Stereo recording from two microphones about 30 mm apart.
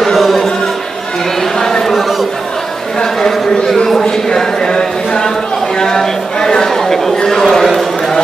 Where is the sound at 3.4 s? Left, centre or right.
Left.